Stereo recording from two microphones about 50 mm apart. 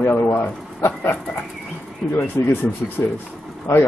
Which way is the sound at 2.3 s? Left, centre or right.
Left.